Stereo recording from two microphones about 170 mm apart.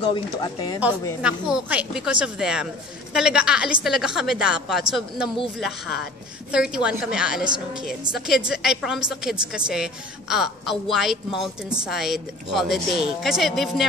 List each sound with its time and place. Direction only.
0.0 s speech: 25° left (ahead or behind)
1.2 s a woman's voice: 5° right (ahead or behind)